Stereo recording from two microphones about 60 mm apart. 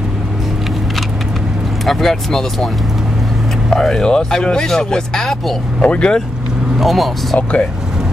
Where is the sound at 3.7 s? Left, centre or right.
Centre.